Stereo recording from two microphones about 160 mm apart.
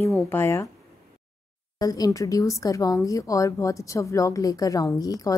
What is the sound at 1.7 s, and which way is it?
Speech, 25° left (ahead or behind).